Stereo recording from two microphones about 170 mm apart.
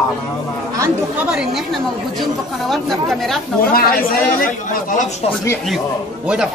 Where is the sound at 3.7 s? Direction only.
60° left (ahead or behind).